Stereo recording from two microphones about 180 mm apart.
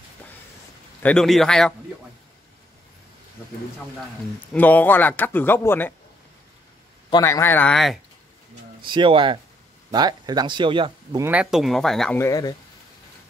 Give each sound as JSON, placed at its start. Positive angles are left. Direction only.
{"t": 1.0, "sound": "speech", "side_deg": 5}
{"t": 4.5, "sound": "a man's voice", "side_deg": 10}
{"t": 7.1, "sound": "a man's voice", "side_deg": 20}
{"t": 8.8, "sound": "speech", "side_deg": -25}
{"t": 11.2, "sound": "speech", "side_deg": -5}
{"t": 12.2, "sound": "speech", "side_deg": 20}